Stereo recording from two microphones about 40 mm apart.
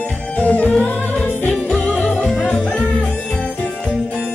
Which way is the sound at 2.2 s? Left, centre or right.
Centre.